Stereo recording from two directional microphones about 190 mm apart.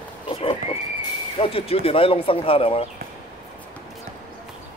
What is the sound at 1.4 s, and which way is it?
Speech, 30° left (ahead or behind).